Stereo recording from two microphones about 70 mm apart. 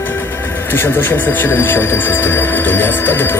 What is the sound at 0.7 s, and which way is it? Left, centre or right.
Speech, left.